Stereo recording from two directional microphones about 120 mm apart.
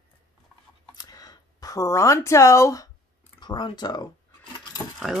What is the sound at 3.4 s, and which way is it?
Speech, 40° left (ahead or behind).